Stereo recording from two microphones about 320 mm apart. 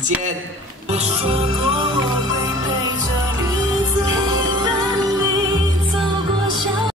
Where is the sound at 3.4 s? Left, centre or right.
Centre.